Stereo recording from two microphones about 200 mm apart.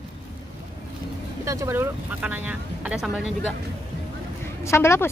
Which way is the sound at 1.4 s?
15° right (ahead or behind).